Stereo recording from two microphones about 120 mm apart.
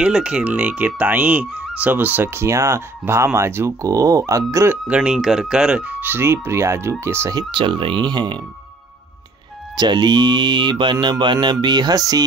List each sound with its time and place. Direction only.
0.0 s speech: 5° right (ahead or behind); by 4.7 s 25° right (ahead or behind)
4.8 s speech: 10° right (ahead or behind)
7.3 s speech: 45° right (ahead or behind)
9.8 s speech: 40° right (ahead or behind)